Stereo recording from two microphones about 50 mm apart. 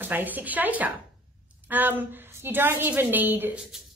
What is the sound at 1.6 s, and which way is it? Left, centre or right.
A woman's voice, right.